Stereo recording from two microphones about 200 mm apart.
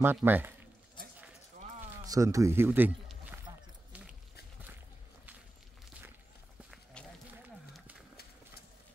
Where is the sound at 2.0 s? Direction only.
15° right (ahead or behind).